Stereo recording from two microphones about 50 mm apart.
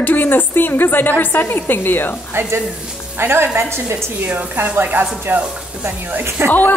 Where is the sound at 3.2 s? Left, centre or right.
Right.